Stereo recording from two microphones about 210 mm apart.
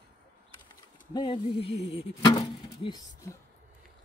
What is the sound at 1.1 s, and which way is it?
Music, 25° left (ahead or behind).